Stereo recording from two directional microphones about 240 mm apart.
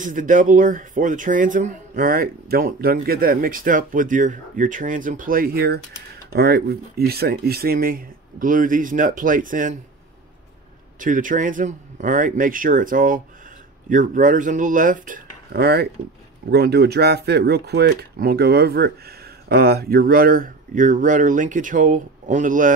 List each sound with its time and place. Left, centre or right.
0.0 s speech: right
11.0 s speech: right